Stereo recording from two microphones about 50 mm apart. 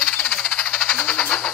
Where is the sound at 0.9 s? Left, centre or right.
Left.